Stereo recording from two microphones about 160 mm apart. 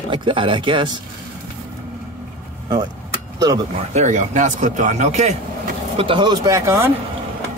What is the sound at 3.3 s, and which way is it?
Speech, 25° right (ahead or behind).